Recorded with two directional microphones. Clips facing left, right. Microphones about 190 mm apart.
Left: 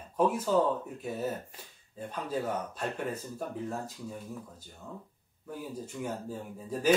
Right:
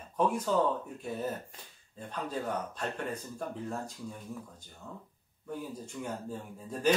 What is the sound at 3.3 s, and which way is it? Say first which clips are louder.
A man's voice: left 1 dB; 5° left (ahead or behind).